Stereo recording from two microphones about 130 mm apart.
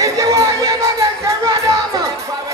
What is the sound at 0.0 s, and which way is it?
Music, 25° right (ahead or behind).